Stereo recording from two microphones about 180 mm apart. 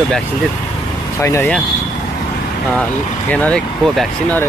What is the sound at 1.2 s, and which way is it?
Speech, 15° left (ahead or behind).